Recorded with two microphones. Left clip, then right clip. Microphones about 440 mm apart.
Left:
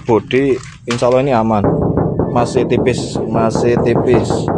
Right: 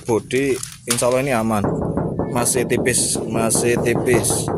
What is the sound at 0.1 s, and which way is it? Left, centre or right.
Speech, right.